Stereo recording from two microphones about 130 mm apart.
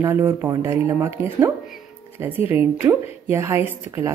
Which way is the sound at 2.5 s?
15° right (ahead or behind).